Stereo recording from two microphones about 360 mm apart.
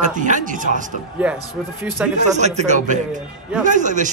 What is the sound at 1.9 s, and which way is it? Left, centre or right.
Speech, centre.